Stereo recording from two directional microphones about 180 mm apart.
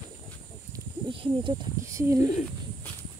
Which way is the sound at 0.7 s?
25° right (ahead or behind).